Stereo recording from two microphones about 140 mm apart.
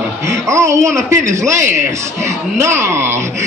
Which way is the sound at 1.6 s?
65° right (ahead or behind).